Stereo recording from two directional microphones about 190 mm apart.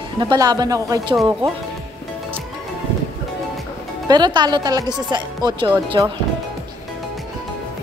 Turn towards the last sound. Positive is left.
turn(degrees=-25)  # may be behind; listen again after turning